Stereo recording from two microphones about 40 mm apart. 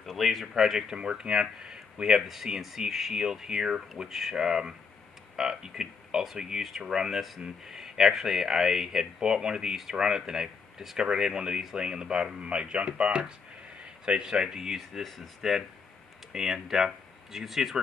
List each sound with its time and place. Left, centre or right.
0.2 s speech: centre
0.9 s speech: right
2.0 s speech: centre
14.8 s speech: centre
16.3 s speech: centre